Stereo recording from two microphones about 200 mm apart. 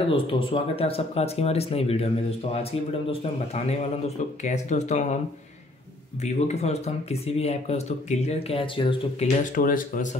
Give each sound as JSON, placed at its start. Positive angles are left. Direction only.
{"t": 0.1, "sound": "speech", "side_deg": 25}
{"t": 6.3, "sound": "speech", "side_deg": 35}
{"t": 9.4, "sound": "speech", "side_deg": 40}